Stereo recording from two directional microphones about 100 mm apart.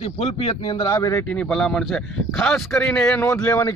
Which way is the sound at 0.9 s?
35° left (ahead or behind).